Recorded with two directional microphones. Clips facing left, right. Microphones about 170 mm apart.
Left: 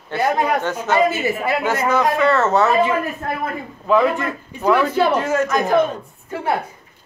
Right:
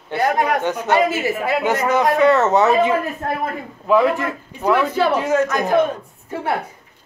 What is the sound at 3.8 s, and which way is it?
A man's voice, 5° right (ahead or behind).